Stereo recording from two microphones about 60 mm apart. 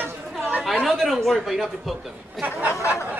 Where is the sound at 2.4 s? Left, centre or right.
Right.